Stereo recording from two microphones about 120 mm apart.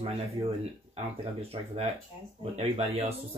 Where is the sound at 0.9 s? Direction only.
65° right (ahead or behind).